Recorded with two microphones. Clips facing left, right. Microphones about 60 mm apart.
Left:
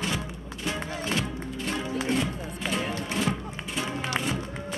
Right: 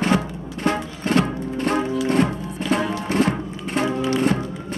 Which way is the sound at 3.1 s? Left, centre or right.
Right.